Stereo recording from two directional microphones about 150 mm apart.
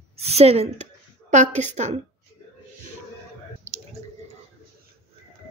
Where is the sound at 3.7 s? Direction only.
50° right (ahead or behind).